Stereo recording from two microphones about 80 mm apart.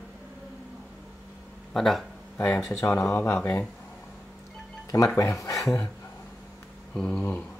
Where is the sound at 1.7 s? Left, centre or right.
Centre.